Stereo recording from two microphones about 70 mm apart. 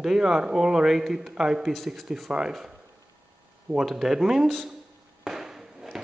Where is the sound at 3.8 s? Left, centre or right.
Centre.